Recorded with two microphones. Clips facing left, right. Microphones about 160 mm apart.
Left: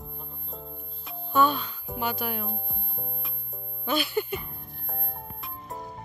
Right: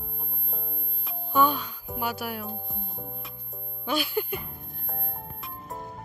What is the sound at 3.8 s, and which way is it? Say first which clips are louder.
Speech: left 1 dB; 10° right (ahead or behind).